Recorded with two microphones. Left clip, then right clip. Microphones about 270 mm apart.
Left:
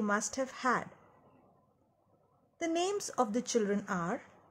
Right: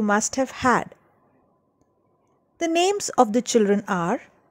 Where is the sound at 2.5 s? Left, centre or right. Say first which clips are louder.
Right 12 dB; right.